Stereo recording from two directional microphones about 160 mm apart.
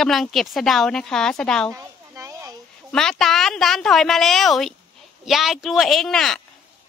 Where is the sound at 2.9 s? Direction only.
5° left (ahead or behind).